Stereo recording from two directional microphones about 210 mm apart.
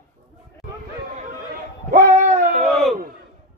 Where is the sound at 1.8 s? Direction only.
40° right (ahead or behind).